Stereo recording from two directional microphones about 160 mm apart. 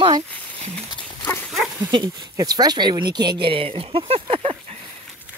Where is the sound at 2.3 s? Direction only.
25° right (ahead or behind).